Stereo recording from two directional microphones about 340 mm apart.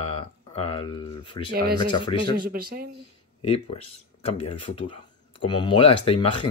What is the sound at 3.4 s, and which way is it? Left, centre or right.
Speech, centre.